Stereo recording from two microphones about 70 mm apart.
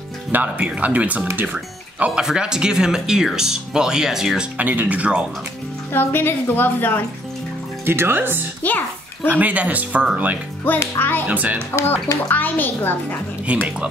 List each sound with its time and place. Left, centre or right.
0.3 s speech: right; by 4.5 s centre
4.6 s speech: right
5.9 s a woman's voice: left
7.8 s speech: right
8.6 s a child's voice: left
9.3 s speech: right
10.6 s a woman's voice: left
11.2 s speech: right
11.7 s a woman's voice: left
13.5 s speech: centre